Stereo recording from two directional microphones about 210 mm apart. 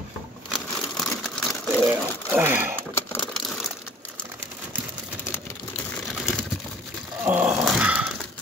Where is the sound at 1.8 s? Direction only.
10° right (ahead or behind).